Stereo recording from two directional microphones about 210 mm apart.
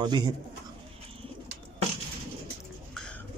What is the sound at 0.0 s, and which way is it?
Speech, 20° right (ahead or behind).